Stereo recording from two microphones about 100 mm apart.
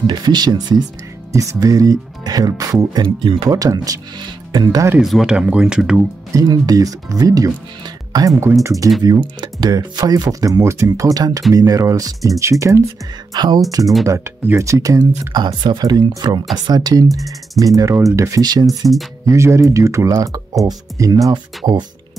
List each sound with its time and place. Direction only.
0.0 s speech: 50° right (ahead or behind)
1.3 s speech: 30° right (ahead or behind); by 3.4 s 55° right (ahead or behind)
3.4 s speech: 40° right (ahead or behind)
5.2 s speech: 10° right (ahead or behind)
6.3 s speech: 40° right (ahead or behind)
13.3 s speech: 45° right (ahead or behind)
18.4 s speech: 45° right (ahead or behind)
19.2 s speech: 30° right (ahead or behind)